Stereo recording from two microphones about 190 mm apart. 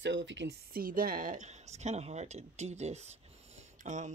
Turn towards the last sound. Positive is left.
turn(degrees=-40)  # may be behind; listen again after turning